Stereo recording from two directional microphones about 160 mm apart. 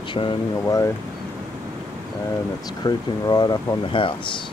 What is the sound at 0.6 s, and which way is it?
Speech, 20° left (ahead or behind).